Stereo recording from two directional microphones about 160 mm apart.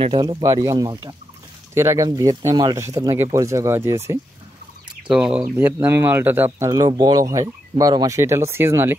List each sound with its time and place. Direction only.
0.0 s speech: 30° right (ahead or behind)
5.0 s speech: 5° right (ahead or behind)